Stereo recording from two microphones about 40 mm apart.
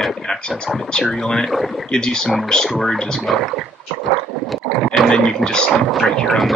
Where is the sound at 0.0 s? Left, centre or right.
Centre.